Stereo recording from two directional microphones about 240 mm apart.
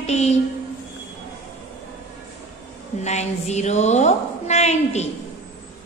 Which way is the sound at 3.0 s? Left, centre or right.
Left.